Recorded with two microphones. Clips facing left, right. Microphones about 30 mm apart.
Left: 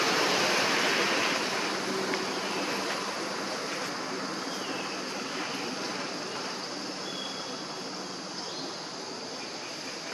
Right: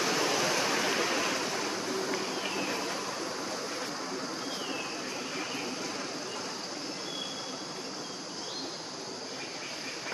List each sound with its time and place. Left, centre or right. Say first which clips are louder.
0.0 s vehicle: left 3 dB; left